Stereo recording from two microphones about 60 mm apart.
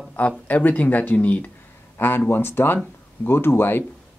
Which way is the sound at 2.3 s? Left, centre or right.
Left.